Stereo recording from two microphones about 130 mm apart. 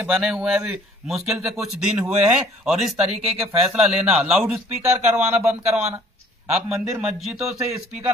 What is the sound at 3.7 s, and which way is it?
A man's voice, 5° right (ahead or behind).